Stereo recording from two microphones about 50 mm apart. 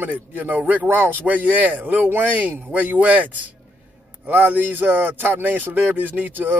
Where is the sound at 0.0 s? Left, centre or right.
Right.